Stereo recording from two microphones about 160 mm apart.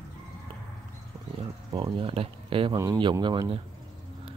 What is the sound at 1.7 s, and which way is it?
Speech, 30° right (ahead or behind).